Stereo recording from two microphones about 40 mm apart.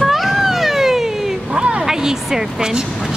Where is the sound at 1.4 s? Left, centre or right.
Right.